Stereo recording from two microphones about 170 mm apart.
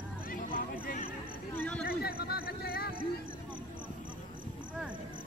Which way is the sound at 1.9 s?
65° left (ahead or behind).